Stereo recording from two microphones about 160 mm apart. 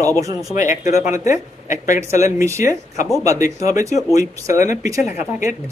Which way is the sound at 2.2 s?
20° right (ahead or behind).